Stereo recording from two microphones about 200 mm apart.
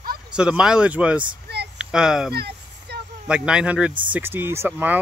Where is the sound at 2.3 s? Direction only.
55° right (ahead or behind).